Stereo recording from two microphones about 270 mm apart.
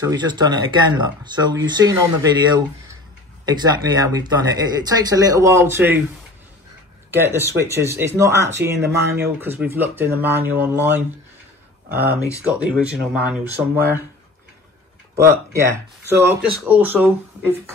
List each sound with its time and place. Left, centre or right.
0.0 s speech: centre
7.1 s speech: centre
12.5 s speech: centre
15.1 s speech: centre